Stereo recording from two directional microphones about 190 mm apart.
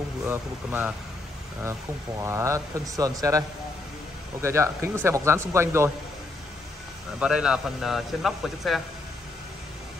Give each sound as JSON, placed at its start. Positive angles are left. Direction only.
{"t": 0.2, "sound": "a man's voice", "side_deg": -10}
{"t": 2.2, "sound": "a man's voice", "side_deg": -15}
{"t": 7.2, "sound": "a man's voice", "side_deg": -5}